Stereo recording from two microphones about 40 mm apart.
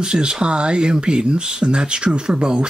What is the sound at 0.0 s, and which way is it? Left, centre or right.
Speech, right.